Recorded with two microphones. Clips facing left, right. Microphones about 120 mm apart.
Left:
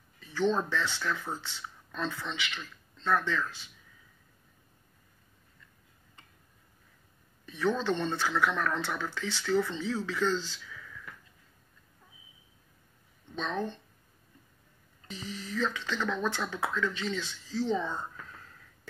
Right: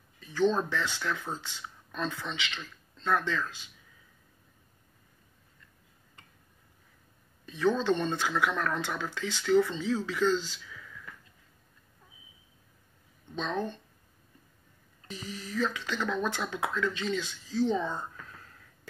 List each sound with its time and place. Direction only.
0.2 s speech: 15° right (ahead or behind)
7.4 s speech: 15° right (ahead or behind)
13.3 s speech: 15° right (ahead or behind)
15.0 s speech: 10° right (ahead or behind)